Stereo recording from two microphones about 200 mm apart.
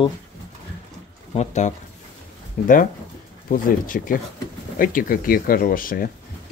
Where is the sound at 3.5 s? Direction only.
45° left (ahead or behind).